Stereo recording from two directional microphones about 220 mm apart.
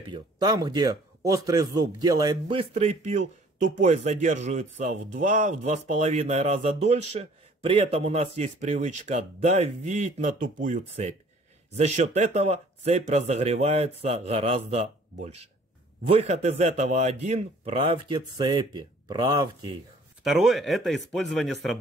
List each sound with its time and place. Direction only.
0.0 s speech: 20° right (ahead or behind)
2.7 s a man's voice: 30° right (ahead or behind)
20.2 s speech: centre (ahead or behind)